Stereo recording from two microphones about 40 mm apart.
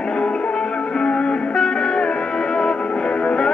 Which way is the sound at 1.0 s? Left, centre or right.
Centre.